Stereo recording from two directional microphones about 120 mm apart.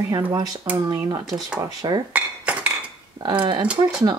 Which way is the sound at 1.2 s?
Centre (ahead or behind).